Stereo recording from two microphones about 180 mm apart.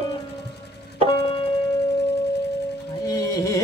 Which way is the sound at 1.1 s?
30° left (ahead or behind).